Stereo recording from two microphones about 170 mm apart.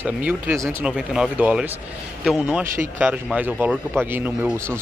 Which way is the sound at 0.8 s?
5° right (ahead or behind).